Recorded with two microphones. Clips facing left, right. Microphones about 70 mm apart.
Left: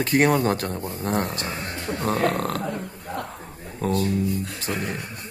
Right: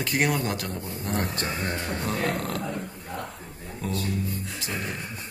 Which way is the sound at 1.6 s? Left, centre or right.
Right.